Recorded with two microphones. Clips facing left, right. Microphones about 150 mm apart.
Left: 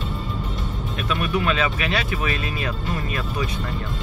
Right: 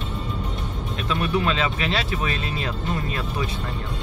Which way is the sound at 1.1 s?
30° right (ahead or behind).